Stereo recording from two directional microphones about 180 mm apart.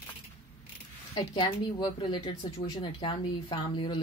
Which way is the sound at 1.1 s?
25° left (ahead or behind).